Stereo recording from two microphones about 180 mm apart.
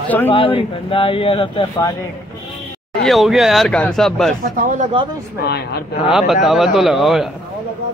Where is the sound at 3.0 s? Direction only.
Centre (ahead or behind).